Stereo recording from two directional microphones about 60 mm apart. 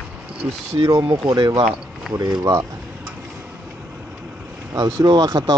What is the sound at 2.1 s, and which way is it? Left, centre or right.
Speech, right.